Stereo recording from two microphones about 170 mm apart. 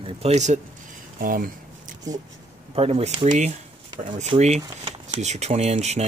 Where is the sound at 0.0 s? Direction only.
40° right (ahead or behind).